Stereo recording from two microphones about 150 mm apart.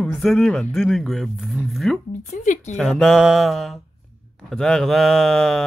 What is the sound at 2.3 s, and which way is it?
Speech, 50° left (ahead or behind).